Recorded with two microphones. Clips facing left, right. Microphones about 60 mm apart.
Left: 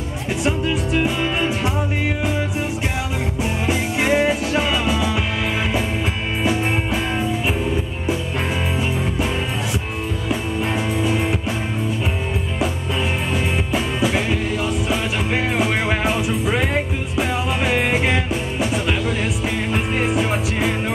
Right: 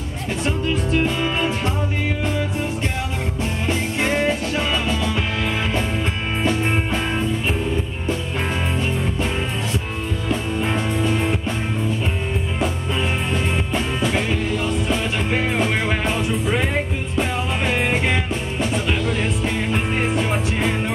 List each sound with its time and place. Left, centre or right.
0.4 s music: centre
3.6 s music: centre
6.4 s music: centre
10.7 s music: centre
13.3 s music: centre